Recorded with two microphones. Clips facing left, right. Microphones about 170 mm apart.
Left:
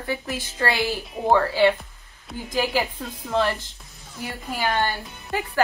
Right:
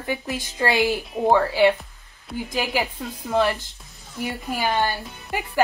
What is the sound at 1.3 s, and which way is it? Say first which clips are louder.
Speech: even; 15° right (ahead or behind).